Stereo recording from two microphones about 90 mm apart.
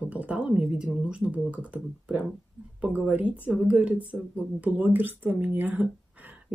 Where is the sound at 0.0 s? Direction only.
15° right (ahead or behind).